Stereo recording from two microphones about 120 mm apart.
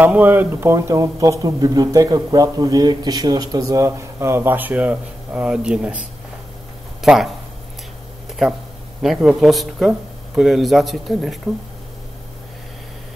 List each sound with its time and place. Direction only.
0.0 s speech: 15° right (ahead or behind)
7.0 s speech: centre (ahead or behind)
9.0 s speech: 5° right (ahead or behind)